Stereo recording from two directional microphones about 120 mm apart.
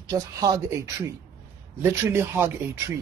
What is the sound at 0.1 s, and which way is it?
Speech, 30° right (ahead or behind).